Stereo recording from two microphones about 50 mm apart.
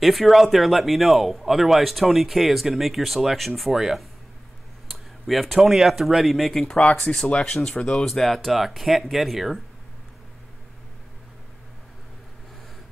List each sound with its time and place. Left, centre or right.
0.0 s speech: centre
6.9 s speech: centre
8.1 s speech: centre